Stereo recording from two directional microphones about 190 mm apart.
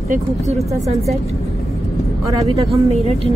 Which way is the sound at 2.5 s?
30° right (ahead or behind).